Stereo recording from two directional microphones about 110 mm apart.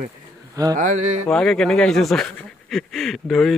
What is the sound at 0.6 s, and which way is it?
Speech, 30° right (ahead or behind).